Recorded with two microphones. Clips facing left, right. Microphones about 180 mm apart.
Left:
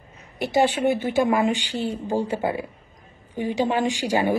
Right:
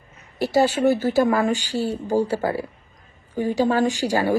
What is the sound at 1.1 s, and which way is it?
A woman's voice, 20° left (ahead or behind).